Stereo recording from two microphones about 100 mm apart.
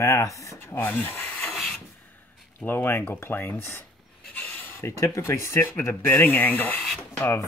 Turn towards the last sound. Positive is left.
turn(degrees=20)  # may be behind; listen again after turning